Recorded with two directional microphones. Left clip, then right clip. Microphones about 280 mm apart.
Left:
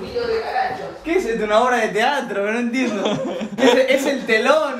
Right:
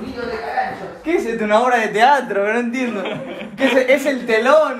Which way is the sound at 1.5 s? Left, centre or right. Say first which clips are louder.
Right 3 dB; centre.